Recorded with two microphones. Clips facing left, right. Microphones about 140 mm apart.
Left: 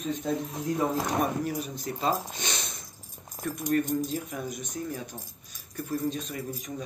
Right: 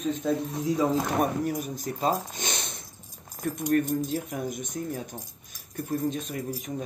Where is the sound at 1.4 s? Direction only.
45° right (ahead or behind).